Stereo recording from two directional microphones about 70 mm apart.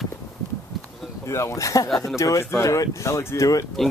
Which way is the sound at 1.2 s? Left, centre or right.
Left.